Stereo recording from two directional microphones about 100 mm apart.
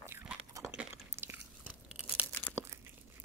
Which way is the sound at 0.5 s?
35° right (ahead or behind).